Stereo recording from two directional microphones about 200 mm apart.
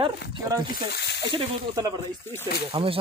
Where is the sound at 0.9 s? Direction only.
55° left (ahead or behind).